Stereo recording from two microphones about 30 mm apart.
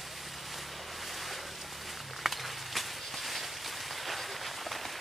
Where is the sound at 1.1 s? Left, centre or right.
Centre.